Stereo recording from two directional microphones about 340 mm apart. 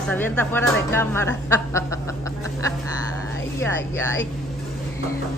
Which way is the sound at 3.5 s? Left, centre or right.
Centre.